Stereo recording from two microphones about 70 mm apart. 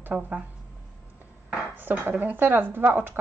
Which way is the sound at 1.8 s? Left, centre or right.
Right.